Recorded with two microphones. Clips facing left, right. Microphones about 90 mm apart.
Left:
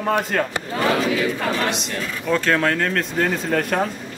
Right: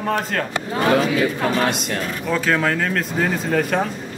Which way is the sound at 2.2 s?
5° right (ahead or behind).